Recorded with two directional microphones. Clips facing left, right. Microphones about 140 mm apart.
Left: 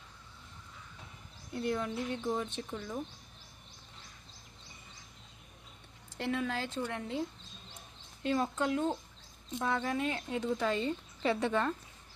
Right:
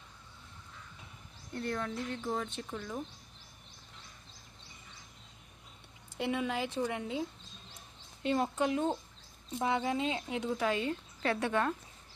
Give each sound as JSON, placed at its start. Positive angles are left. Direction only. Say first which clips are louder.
{"t": 1.5, "sound": "a woman's voice", "louder": "left 2 dB", "side_deg": 10}
{"t": 6.1, "sound": "a woman's voice", "louder": "right 1 dB", "side_deg": -15}